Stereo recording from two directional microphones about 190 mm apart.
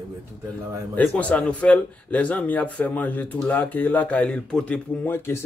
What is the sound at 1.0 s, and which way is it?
Speech, 5° left (ahead or behind).